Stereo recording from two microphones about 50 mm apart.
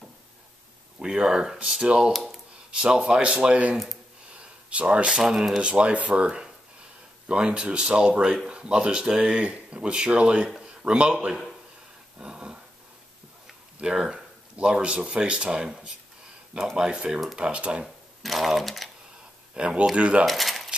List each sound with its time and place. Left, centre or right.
0.9 s speech: centre
2.1 s a sound: centre
2.7 s speech: centre
4.4 s a sound: right
5.2 s speech: centre
12.2 s dog: centre
13.9 s speech: centre
17.8 s speech: centre
19.5 s speech: right
20.2 s coin: centre